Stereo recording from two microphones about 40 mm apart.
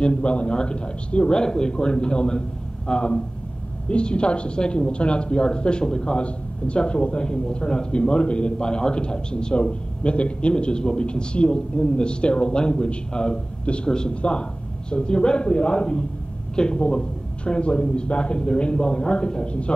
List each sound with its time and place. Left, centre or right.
0.0 s a woman's voice: left